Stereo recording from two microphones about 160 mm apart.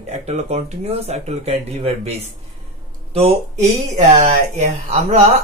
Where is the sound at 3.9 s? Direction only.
45° right (ahead or behind).